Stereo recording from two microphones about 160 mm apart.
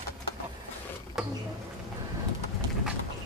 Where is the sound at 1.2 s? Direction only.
5° right (ahead or behind).